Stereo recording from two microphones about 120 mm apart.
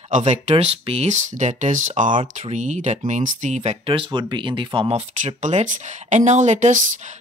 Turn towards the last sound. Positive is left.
turn(degrees=-90)